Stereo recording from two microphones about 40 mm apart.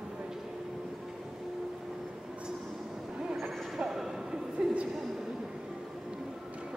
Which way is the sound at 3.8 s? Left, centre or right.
Centre.